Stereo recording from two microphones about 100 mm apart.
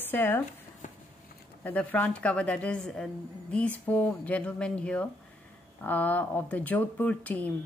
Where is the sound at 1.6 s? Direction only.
15° left (ahead or behind).